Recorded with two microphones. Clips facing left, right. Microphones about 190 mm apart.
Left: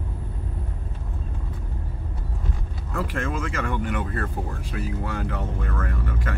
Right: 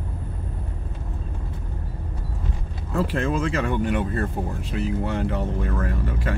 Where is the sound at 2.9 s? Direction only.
30° right (ahead or behind).